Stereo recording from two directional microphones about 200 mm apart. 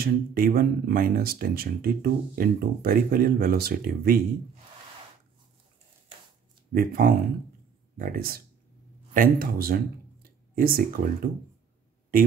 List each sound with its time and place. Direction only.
0.0 s speech: 50° right (ahead or behind)
6.7 s speech: 45° right (ahead or behind)